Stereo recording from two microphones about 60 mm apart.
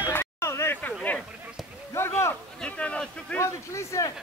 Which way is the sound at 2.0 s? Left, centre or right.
Left.